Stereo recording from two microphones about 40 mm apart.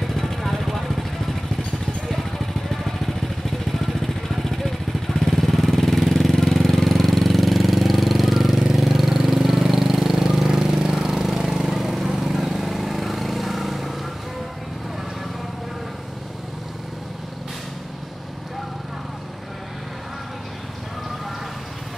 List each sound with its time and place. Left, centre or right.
0.1 s vehicle: centre
2.0 s vehicle: centre
11.0 s lawn mower: centre